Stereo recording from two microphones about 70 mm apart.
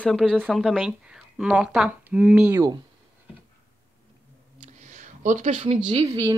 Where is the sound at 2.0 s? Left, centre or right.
Right.